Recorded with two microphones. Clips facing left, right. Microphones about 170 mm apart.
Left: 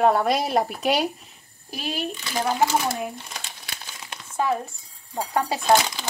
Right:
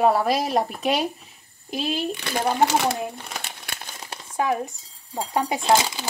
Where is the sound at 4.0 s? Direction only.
35° right (ahead or behind).